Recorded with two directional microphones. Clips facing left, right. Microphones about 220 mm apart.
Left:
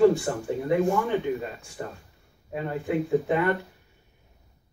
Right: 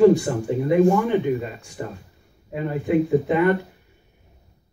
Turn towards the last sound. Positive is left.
turn(degrees=-20)  # may be behind; listen again after turning